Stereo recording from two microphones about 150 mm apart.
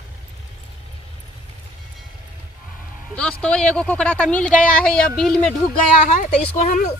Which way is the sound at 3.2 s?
5° left (ahead or behind).